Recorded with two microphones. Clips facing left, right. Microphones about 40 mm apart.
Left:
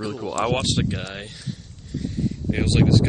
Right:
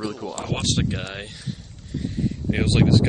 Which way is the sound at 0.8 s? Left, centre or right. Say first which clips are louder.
Even; centre.